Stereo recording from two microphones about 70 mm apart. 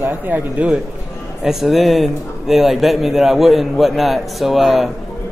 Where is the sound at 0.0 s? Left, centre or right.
Right.